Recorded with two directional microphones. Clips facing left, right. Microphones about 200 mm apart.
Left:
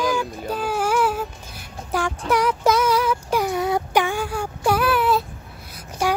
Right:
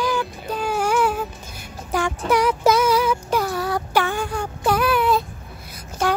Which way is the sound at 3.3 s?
15° left (ahead or behind).